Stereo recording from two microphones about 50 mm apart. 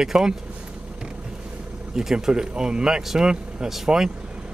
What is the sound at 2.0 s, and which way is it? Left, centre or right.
Speech, centre.